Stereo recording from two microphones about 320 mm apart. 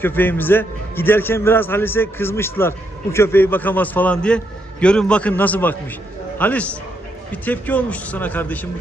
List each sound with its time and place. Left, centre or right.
0.0 s a man's voice: centre